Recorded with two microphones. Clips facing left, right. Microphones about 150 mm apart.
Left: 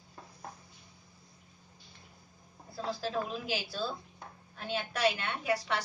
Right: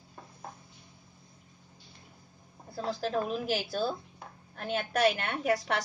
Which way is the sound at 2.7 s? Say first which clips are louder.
Right 3 dB; 50° right (ahead or behind).